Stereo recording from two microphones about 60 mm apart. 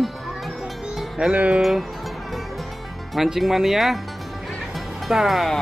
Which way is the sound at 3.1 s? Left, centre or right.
Centre.